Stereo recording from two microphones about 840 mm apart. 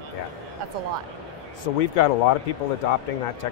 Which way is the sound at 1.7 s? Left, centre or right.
Left.